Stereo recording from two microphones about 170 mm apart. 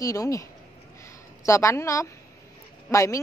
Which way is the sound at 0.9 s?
15° left (ahead or behind).